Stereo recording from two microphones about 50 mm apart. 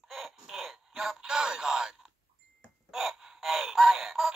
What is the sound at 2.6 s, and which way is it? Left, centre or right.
Music, centre.